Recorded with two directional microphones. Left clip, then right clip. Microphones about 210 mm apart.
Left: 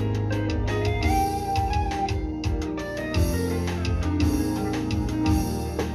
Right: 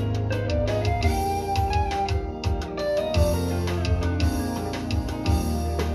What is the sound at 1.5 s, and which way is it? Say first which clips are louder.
Music: right 1 dB; 40° right (ahead or behind).